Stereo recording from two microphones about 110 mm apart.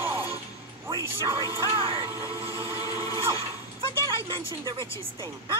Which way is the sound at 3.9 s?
25° left (ahead or behind).